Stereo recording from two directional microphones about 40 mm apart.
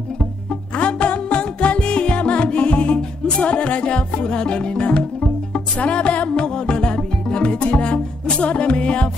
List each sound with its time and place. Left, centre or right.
0.7 s music: left
3.0 s music: centre
3.4 s music: left